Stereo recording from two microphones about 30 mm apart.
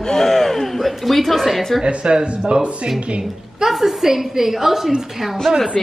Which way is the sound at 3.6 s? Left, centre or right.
Centre.